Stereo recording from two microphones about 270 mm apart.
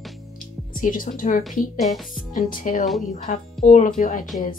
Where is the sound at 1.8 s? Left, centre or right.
Centre.